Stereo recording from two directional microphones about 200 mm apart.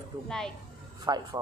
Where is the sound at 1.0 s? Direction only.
20° right (ahead or behind).